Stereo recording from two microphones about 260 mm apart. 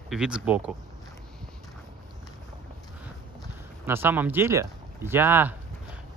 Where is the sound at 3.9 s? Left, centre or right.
Centre.